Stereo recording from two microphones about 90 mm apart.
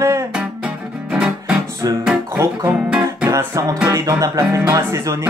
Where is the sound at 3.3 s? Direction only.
35° right (ahead or behind).